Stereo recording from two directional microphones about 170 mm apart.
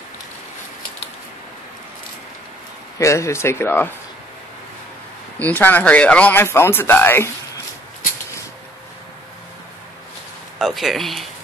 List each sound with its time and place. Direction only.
3.0 s speech: 15° left (ahead or behind)
5.4 s speech: 10° left (ahead or behind)
10.6 s speech: centre (ahead or behind)